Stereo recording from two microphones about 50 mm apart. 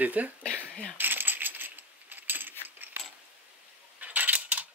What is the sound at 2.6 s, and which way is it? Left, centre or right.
Ratchet, right.